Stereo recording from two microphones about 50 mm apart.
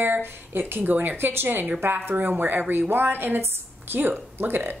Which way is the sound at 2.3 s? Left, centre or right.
Right.